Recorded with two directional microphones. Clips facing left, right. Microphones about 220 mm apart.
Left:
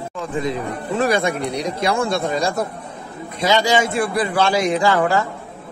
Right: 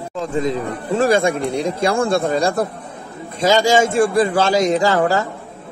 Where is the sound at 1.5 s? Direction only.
50° right (ahead or behind).